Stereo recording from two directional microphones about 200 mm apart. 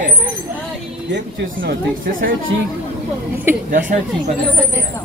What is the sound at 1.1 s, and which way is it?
Speech, 50° right (ahead or behind).